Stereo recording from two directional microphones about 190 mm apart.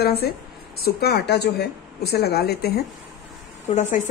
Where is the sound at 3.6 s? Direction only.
40° left (ahead or behind).